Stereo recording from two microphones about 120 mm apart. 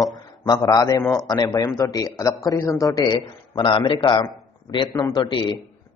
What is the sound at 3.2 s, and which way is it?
A man's voice, 45° left (ahead or behind).